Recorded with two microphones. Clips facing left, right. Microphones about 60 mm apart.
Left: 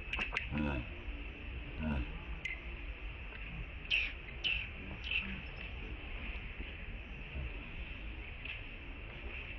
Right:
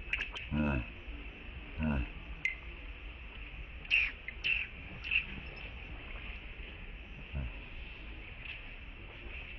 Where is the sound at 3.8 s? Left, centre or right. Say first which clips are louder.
Right 5 dB; right.